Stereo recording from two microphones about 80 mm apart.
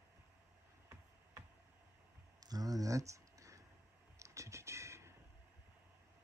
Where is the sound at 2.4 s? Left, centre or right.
Right.